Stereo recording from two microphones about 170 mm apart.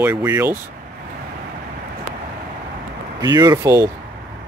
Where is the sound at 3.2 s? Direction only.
20° right (ahead or behind).